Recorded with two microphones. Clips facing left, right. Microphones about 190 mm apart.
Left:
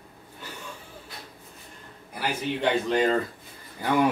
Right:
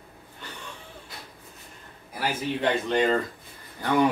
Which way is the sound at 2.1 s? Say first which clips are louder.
Right 1 dB; centre (ahead or behind).